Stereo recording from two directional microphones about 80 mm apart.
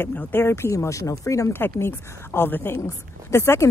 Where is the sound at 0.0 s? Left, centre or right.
Left.